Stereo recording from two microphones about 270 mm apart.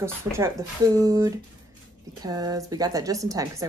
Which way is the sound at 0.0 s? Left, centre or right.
Centre.